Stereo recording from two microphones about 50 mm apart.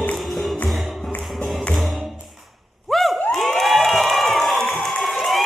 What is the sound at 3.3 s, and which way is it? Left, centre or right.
Crowd, centre.